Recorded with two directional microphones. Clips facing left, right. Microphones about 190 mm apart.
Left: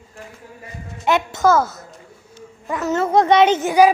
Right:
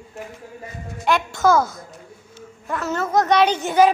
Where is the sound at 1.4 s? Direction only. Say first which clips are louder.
Even; 5° left (ahead or behind); by 3.6 s 25° left (ahead or behind).